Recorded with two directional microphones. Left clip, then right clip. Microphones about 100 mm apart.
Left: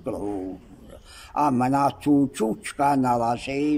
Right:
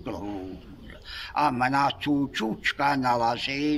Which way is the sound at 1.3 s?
60° left (ahead or behind).